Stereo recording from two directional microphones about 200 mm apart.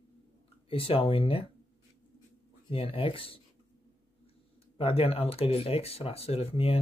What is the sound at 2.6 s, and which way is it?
Speech, 25° left (ahead or behind).